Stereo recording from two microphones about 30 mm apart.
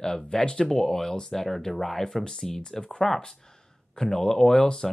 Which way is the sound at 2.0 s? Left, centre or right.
Left.